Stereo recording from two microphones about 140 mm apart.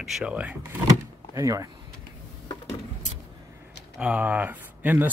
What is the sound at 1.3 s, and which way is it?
Speech, 25° right (ahead or behind).